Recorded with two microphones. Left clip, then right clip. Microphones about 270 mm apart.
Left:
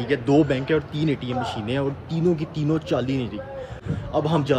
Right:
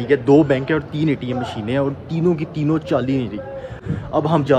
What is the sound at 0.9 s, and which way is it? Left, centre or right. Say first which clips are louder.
Speech: right 4 dB; centre.